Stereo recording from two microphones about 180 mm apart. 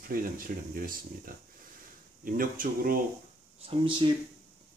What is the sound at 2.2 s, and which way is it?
Speech, 50° right (ahead or behind).